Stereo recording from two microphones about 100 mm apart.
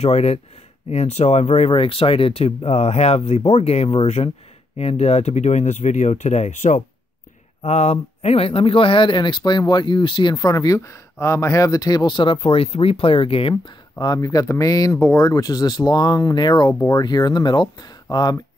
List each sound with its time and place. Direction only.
0.0 s speech: 90° left; by 13.6 s 65° left (ahead or behind)
13.9 s speech: 40° left (ahead or behind)